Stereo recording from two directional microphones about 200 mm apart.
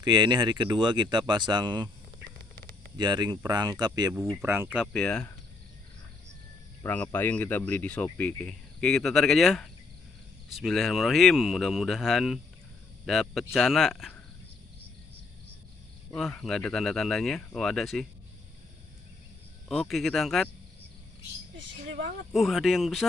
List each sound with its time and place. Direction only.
0.0 s speech: 20° right (ahead or behind)
3.0 s speech: 20° right (ahead or behind); by 5.3 s 5° left (ahead or behind)
6.8 s speech: 10° left (ahead or behind)
16.2 s speech: centre (ahead or behind)
19.7 s speech: centre (ahead or behind)
22.3 s speech: centre (ahead or behind)